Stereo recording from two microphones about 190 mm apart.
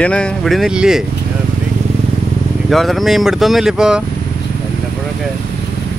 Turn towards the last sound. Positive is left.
turn(degrees=-5)  # may be behind; listen again after turning